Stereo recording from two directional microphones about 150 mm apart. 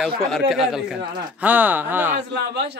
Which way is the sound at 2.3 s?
90° right.